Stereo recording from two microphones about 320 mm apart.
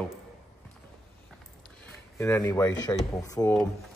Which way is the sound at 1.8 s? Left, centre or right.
Centre.